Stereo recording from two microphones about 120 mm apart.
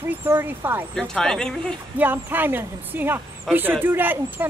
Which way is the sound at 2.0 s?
15° right (ahead or behind).